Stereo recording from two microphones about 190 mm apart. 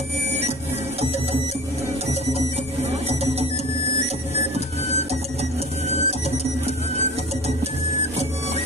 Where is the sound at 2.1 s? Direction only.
35° right (ahead or behind).